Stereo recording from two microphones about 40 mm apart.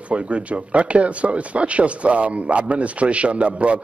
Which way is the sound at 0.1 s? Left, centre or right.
Right.